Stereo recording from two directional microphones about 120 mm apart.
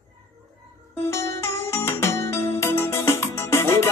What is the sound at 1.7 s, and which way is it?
Music, 25° left (ahead or behind).